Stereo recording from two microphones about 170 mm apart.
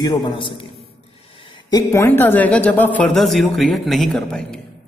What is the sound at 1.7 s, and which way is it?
A woman's voice, 20° left (ahead or behind).